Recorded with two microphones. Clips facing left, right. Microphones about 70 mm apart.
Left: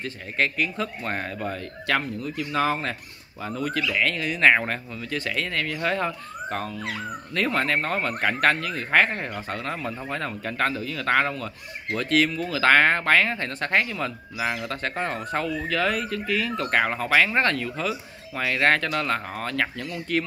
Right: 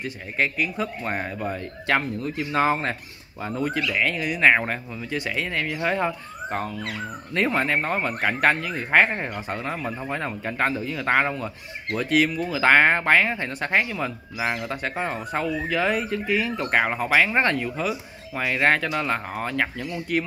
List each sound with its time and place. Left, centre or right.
0.0 s speech: centre
1.9 s speech: right
3.9 s speech: centre